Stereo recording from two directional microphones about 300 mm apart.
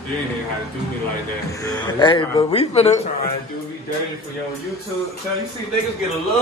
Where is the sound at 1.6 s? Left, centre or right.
Centre.